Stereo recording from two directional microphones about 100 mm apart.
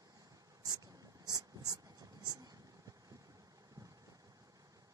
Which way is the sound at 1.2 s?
40° right (ahead or behind).